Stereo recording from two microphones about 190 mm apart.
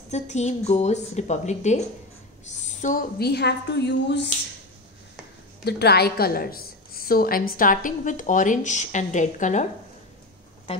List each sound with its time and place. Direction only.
0.1 s a woman's voice: 35° left (ahead or behind)
2.4 s a sound: 40° left (ahead or behind)
3.2 s a woman's voice: 60° left (ahead or behind)
5.7 s a woman's voice: 55° left (ahead or behind); by 9.7 s 40° left (ahead or behind)